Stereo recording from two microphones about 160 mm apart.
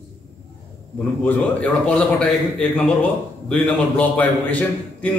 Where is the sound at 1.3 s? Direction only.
5° left (ahead or behind).